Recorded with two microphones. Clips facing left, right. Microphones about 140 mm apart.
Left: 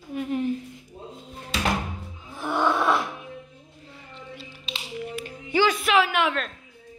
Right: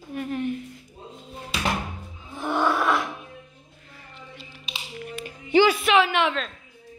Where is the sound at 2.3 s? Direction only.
15° right (ahead or behind).